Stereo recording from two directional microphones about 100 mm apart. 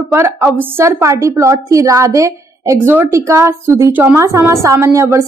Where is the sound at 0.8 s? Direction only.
30° right (ahead or behind).